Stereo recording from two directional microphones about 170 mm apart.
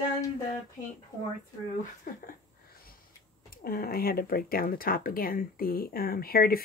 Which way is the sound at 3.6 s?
60° left (ahead or behind).